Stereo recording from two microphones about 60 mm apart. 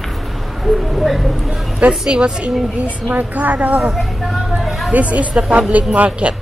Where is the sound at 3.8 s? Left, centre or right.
Centre.